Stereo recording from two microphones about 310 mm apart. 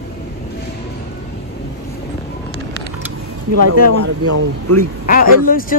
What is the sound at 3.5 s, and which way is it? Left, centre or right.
Speech, right.